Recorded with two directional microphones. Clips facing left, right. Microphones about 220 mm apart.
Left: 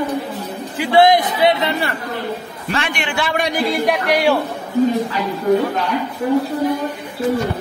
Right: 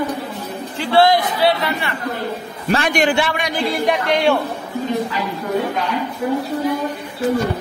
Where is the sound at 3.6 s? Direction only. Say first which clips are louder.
Right 1 dB; centre (ahead or behind).